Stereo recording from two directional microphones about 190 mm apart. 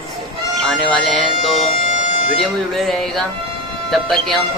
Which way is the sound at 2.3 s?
Centre (ahead or behind).